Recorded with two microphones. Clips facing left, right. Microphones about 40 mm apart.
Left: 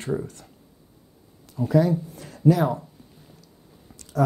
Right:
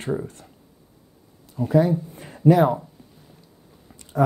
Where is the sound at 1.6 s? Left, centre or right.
Right.